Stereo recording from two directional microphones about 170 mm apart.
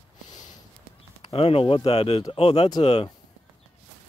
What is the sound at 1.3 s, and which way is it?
Speech, 35° left (ahead or behind).